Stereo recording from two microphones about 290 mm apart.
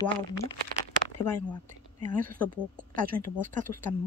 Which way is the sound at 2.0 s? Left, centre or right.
Right.